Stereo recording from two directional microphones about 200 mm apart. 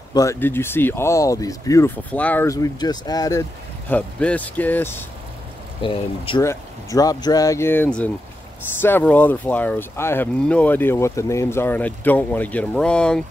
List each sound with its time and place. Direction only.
0.1 s speech: 15° left (ahead or behind)
5.8 s speech: 25° left (ahead or behind)
6.4 s speech: 15° left (ahead or behind)